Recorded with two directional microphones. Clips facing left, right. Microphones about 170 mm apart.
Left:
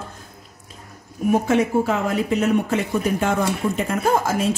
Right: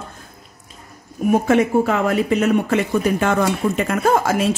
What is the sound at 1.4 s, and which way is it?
Speech, 60° right (ahead or behind).